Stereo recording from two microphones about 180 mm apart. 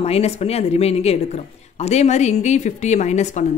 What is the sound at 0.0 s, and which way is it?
Speech, 35° left (ahead or behind).